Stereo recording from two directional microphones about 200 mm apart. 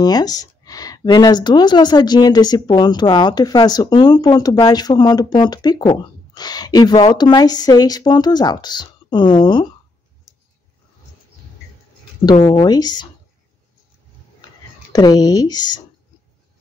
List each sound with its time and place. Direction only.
0.0 s speech: 20° left (ahead or behind)
12.4 s speech: 25° left (ahead or behind)
14.9 s speech: 20° left (ahead or behind)